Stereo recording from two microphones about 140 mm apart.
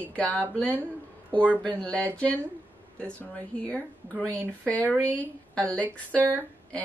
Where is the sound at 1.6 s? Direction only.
10° left (ahead or behind).